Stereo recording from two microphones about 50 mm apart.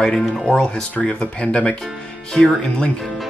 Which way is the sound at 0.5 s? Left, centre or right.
Centre.